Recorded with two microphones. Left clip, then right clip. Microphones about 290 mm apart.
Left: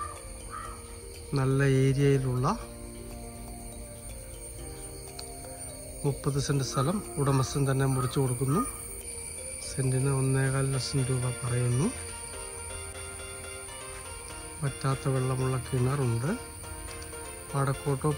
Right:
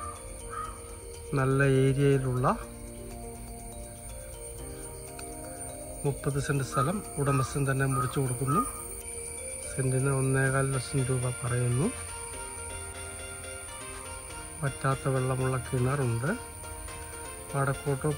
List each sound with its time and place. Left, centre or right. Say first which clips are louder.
1.3 s speech: right 2 dB; centre
6.2 s speech: even; centre
9.8 s speech: right 1 dB; centre
14.6 s speech: right 3 dB; centre
17.5 s speech: right 1 dB; centre